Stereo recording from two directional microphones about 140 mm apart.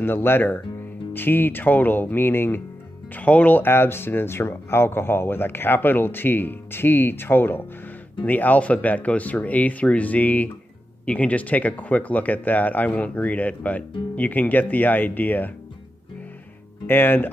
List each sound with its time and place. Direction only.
0.0 s speech: 15° left (ahead or behind)
16.8 s speech: 15° left (ahead or behind)